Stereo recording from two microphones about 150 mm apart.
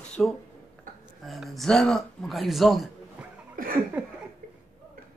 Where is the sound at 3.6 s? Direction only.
70° right (ahead or behind).